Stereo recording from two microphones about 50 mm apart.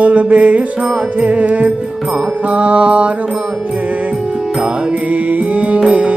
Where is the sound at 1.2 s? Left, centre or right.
Right.